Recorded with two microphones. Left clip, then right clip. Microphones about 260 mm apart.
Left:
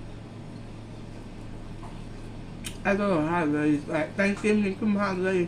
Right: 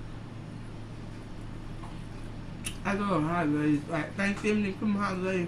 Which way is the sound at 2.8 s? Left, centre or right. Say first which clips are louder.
Left 5 dB; centre.